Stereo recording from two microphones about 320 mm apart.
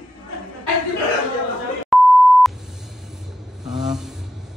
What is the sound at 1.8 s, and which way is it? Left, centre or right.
Beep, centre.